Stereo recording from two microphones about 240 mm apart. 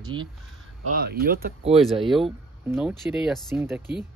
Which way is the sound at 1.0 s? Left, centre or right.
Right.